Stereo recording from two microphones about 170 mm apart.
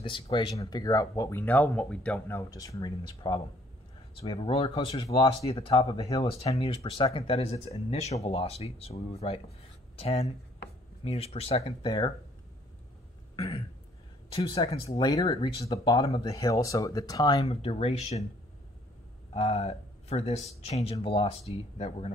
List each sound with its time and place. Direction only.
0.0 s speech: 30° left (ahead or behind)
11.8 s speech: 25° left (ahead or behind)
14.3 s speech: 35° left (ahead or behind)
14.9 s speech: 20° left (ahead or behind)
17.5 s speech: 35° left (ahead or behind)
19.3 s speech: 35° left (ahead or behind)